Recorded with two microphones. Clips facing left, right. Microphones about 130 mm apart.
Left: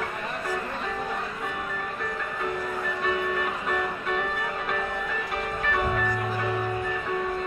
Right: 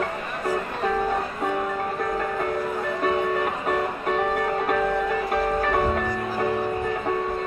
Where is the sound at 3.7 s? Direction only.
40° right (ahead or behind).